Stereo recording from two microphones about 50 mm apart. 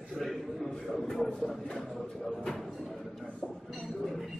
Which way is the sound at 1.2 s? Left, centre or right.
Centre.